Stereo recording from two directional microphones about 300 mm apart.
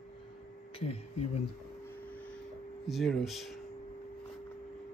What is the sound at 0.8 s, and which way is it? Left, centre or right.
Speech, left.